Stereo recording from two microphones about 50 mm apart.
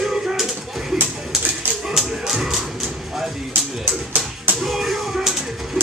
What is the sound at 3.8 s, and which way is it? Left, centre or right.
Music, right.